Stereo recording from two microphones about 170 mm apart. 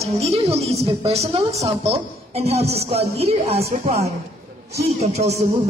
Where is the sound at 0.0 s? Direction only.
35° right (ahead or behind).